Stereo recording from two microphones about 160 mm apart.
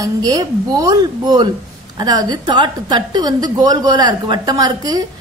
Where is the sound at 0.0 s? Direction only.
20° right (ahead or behind).